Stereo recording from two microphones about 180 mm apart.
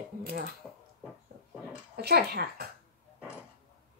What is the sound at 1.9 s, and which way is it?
Speech, 60° right (ahead or behind).